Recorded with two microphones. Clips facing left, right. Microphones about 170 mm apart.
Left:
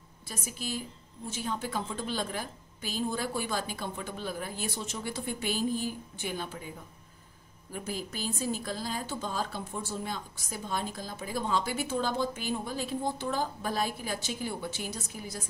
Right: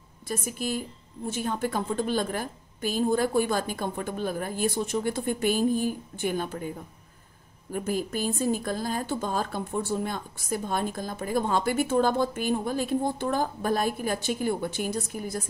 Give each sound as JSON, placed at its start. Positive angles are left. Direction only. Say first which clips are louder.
{"t": 0.3, "sound": "a woman's voice", "louder": "right 7 dB", "side_deg": -50}
{"t": 7.7, "sound": "a woman's voice", "louder": "right 8 dB", "side_deg": -50}